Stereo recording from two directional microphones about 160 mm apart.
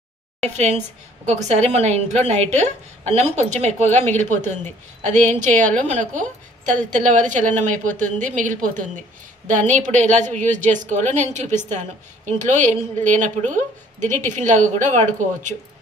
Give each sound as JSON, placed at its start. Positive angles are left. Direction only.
{"t": 0.4, "sound": "a woman's voice", "side_deg": -45}
{"t": 4.1, "sound": "speech", "side_deg": 10}
{"t": 5.0, "sound": "a woman's voice", "side_deg": -45}
{"t": 5.6, "sound": "speech", "side_deg": 10}
{"t": 5.9, "sound": "a woman's voice", "side_deg": -50}